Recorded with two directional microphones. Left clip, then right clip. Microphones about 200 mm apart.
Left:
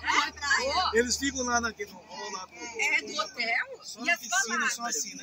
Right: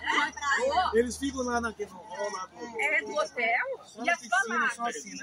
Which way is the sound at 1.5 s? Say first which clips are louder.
Left 2 dB; 30° right (ahead or behind).